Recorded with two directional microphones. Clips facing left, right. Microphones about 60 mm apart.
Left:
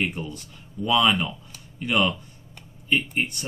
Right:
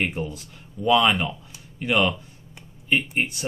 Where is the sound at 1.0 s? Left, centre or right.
Centre.